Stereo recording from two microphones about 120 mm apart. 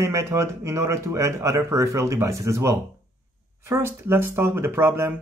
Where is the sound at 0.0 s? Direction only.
25° right (ahead or behind).